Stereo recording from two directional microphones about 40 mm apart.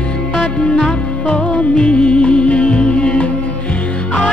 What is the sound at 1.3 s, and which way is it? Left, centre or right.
Music, left.